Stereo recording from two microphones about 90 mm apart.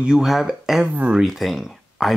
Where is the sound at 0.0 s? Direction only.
5° right (ahead or behind).